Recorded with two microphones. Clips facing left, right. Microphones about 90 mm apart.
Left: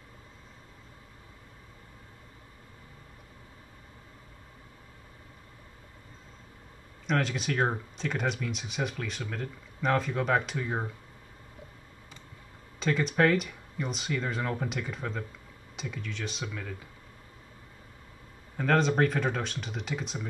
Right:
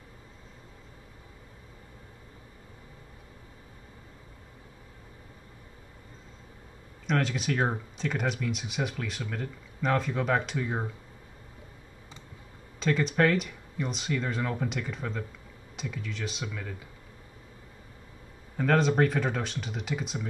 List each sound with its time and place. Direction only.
7.1 s speech: centre (ahead or behind)
12.7 s speech: centre (ahead or behind)
18.6 s speech: centre (ahead or behind)